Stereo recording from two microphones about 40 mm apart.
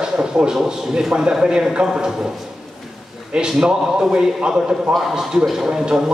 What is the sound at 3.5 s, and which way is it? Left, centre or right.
A man's voice, centre.